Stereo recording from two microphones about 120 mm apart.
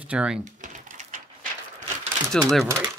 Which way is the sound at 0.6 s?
90° right.